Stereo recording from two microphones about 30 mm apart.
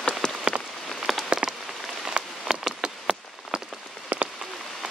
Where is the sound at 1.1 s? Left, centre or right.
Centre.